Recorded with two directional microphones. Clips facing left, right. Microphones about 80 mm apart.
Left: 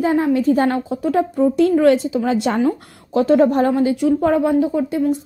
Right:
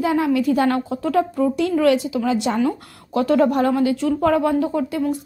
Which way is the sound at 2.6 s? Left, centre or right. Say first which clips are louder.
Left 2 dB; left.